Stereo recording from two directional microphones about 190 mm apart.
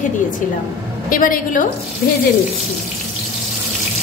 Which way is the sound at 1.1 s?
45° left (ahead or behind).